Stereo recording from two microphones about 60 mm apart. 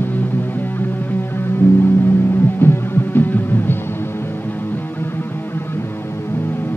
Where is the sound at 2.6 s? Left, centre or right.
Left.